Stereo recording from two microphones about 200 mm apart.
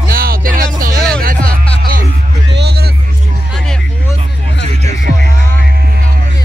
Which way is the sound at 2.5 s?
55° right (ahead or behind).